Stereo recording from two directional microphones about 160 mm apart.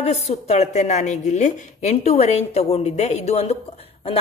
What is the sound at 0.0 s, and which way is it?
A woman's voice, 45° left (ahead or behind).